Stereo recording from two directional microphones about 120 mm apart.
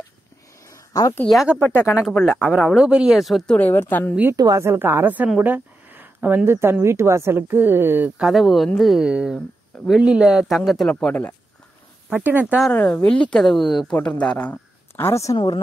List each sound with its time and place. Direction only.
0.7 s a sound: 30° left (ahead or behind)
1.2 s speech: centre (ahead or behind)
1.6 s speech: 20° left (ahead or behind)
2.0 s speech: 5° right (ahead or behind)
3.5 s speech: 15° left (ahead or behind)
4.3 s a woman's voice: 30° right (ahead or behind)
8.2 s speech: centre (ahead or behind)
12.1 s speech: 15° right (ahead or behind)
12.7 s speech: 15° left (ahead or behind)
15.3 s speech: 40° left (ahead or behind)